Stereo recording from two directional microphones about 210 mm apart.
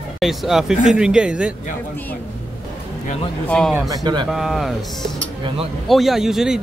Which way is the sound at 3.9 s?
20° right (ahead or behind).